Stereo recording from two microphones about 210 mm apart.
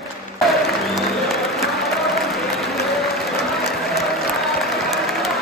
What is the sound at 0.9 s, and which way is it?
Applause, centre (ahead or behind).